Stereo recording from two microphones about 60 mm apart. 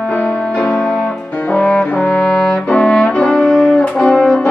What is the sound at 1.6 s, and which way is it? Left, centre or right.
Brass instrument, centre.